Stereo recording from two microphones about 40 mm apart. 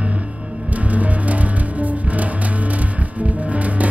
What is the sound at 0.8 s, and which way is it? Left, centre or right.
Music, right.